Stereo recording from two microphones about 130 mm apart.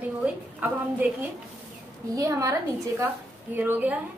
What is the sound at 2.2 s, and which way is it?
Speech, 25° right (ahead or behind).